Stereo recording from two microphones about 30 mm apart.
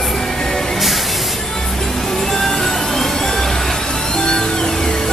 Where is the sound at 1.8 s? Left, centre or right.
Centre.